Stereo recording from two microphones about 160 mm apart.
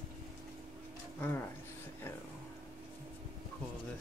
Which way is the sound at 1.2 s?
15° left (ahead or behind).